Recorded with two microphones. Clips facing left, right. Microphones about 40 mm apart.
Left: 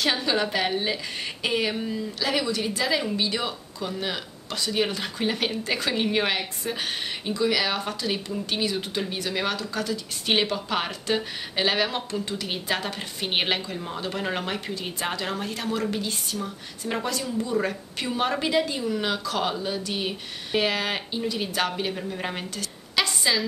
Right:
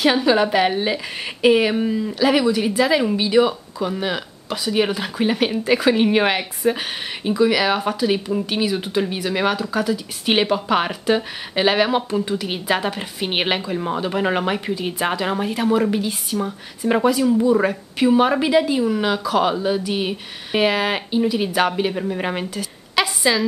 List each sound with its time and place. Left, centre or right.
0.0 s speech: centre